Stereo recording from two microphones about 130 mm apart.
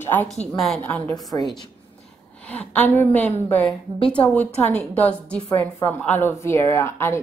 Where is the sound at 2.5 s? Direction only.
15° left (ahead or behind).